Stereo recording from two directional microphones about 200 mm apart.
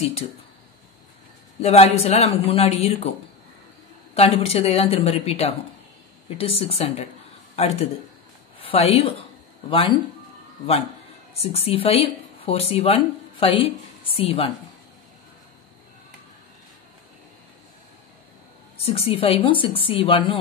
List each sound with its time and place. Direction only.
1.6 s speech: 30° left (ahead or behind)
4.1 s a woman's voice: 30° left (ahead or behind)
11.3 s speech: 30° left (ahead or behind)
18.8 s a woman's voice: 30° left (ahead or behind)